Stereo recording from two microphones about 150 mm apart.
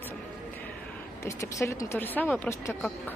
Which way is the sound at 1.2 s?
20° left (ahead or behind).